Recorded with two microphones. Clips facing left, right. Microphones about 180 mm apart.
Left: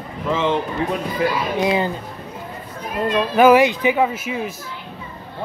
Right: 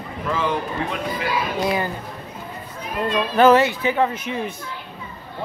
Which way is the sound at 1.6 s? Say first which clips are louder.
Left 4 dB; 20° left (ahead or behind).